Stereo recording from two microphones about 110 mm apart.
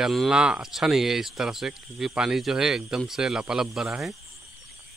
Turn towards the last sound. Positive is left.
turn(degrees=-5)  # may be behind; listen again after turning